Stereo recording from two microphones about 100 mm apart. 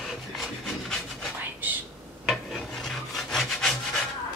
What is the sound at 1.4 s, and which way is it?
Whispering, 20° right (ahead or behind).